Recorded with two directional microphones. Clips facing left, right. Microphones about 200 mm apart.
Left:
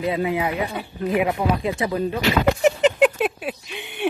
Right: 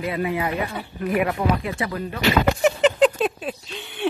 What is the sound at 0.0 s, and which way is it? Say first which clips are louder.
Speech: left 2 dB; 20° left (ahead or behind).